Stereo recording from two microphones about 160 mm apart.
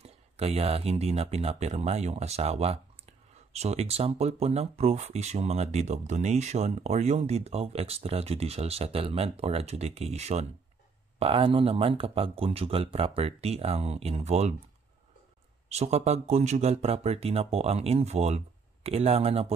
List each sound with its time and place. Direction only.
0.0 s speech: 40° right (ahead or behind)
15.7 s speech: 40° right (ahead or behind)